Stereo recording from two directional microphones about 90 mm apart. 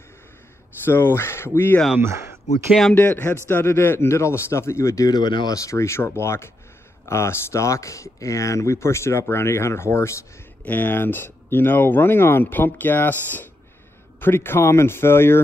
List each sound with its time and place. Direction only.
0.8 s speech: 25° left (ahead or behind)
2.0 s speech: 30° right (ahead or behind)
2.9 s speech: 20° left (ahead or behind); by 5.6 s 55° left (ahead or behind)
5.6 s speech: 35° left (ahead or behind)
14.2 s speech: 25° left (ahead or behind)